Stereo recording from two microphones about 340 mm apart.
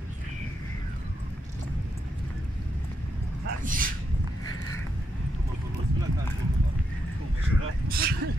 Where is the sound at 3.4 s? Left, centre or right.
Right.